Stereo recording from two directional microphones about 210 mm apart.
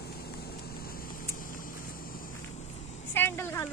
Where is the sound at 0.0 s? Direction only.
50° left (ahead or behind).